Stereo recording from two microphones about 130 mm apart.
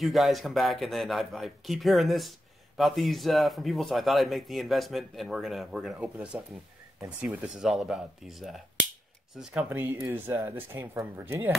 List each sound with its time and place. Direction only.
0.0 s a man's voice: centre (ahead or behind)
9.7 s speech: 15° right (ahead or behind)